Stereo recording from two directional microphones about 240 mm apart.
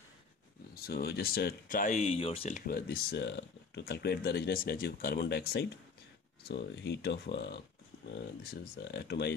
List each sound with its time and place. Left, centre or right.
0.8 s speech: left